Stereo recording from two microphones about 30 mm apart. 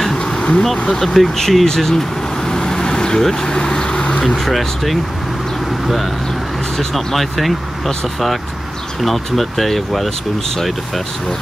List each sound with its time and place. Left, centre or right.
0.1 s bee: left
1.0 s speech: centre
1.9 s vehicle: centre
4.4 s speech: centre
6.8 s speech: centre